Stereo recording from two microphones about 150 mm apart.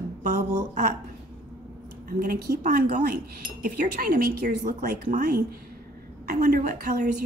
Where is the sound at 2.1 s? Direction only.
75° right (ahead or behind).